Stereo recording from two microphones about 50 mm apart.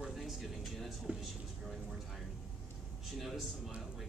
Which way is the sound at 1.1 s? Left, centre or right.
Right.